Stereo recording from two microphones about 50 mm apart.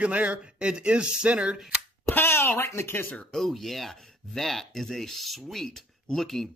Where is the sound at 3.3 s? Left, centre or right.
Centre.